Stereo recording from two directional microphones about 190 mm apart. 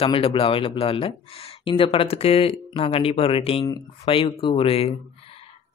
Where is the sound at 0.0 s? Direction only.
30° left (ahead or behind).